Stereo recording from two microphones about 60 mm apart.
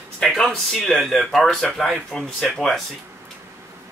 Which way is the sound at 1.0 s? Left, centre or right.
Centre.